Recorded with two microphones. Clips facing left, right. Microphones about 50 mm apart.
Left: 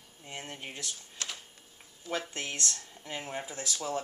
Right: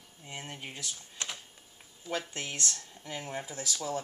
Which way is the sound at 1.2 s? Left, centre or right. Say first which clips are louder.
Right 1 dB; right.